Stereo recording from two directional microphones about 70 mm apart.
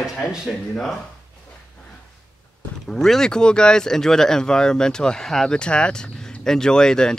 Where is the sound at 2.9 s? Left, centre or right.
Centre.